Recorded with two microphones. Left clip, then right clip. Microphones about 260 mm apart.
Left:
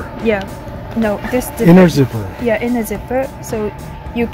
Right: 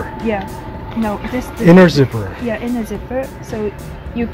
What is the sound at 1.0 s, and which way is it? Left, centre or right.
Speech, left.